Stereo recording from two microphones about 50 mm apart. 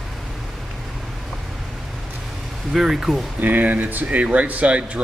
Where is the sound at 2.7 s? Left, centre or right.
Centre.